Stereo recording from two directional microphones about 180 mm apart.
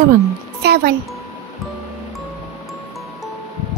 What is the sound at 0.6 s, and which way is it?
Speech, 65° right (ahead or behind).